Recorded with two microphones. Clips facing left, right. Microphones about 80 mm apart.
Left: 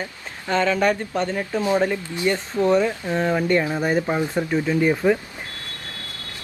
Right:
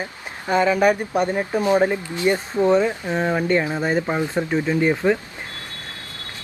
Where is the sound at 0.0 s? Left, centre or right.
Centre.